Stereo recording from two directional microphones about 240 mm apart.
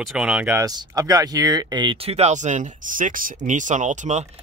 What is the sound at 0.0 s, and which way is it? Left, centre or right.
Speech, centre.